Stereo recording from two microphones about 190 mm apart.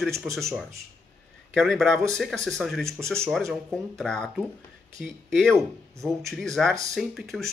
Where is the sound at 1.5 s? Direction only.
Centre (ahead or behind).